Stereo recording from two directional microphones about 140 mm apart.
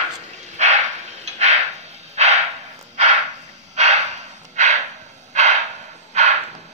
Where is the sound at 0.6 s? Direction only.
55° right (ahead or behind).